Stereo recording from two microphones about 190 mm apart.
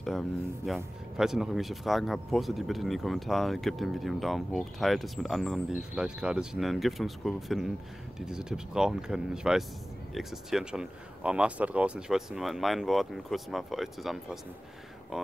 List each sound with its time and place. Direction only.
0.0 s speech: centre (ahead or behind)